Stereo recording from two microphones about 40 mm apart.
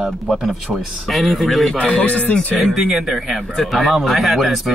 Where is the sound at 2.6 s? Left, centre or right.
Centre.